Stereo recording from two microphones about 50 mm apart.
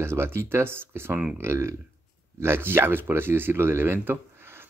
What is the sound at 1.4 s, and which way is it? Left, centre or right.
Speech, right.